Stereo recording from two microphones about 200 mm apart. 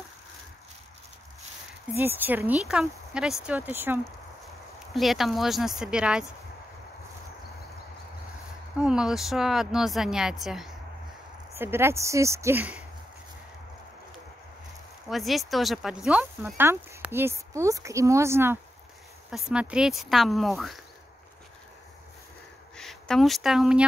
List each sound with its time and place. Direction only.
2.0 s a woman's voice: 10° right (ahead or behind)
8.7 s a woman's voice: 5° right (ahead or behind)
11.5 s speech: 10° right (ahead or behind)
15.0 s a woman's voice: centre (ahead or behind)
22.8 s speech: centre (ahead or behind)